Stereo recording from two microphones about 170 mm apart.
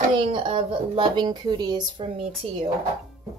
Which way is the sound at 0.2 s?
35° right (ahead or behind).